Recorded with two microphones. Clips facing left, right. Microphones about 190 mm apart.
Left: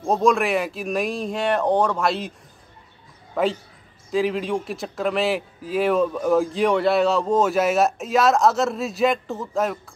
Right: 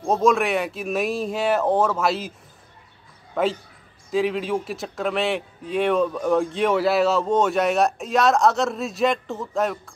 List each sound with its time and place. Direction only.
0.0 s a man's voice: centre (ahead or behind)
3.4 s a man's voice: centre (ahead or behind)